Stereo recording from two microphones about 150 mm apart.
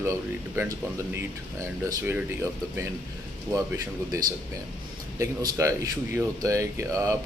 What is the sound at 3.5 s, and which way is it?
Speech, 20° right (ahead or behind).